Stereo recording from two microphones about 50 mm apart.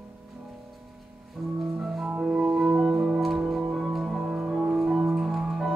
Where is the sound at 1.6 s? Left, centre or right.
Centre.